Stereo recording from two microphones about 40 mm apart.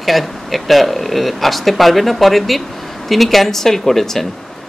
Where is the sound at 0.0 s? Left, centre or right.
Centre.